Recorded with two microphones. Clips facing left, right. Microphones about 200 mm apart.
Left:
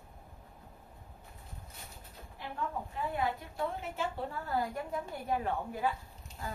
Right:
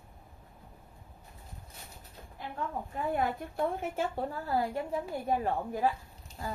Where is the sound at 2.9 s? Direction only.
50° right (ahead or behind).